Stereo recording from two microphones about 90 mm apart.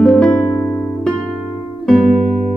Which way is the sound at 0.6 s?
20° left (ahead or behind).